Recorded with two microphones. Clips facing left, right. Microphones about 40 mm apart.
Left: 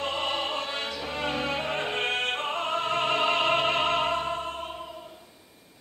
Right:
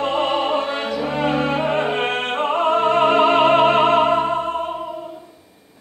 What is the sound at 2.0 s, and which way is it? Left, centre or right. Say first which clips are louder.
Music: right 7 dB; centre.